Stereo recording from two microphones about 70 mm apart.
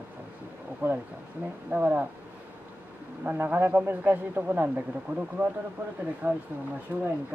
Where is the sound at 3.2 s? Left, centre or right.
Right.